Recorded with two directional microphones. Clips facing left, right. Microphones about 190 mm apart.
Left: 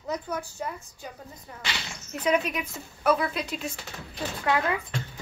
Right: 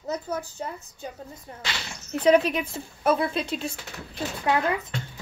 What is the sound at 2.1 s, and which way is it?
A woman's voice, 30° right (ahead or behind).